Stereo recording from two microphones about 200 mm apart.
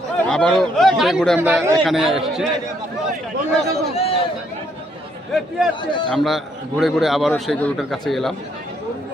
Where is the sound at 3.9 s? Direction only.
30° left (ahead or behind).